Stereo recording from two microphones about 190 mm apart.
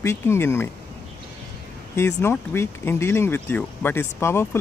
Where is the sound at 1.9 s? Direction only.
15° left (ahead or behind).